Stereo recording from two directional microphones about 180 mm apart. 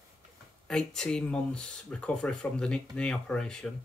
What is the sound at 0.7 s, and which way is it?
Speech, 5° left (ahead or behind).